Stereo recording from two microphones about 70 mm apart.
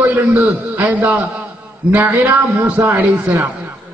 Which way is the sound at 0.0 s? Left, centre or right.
Right.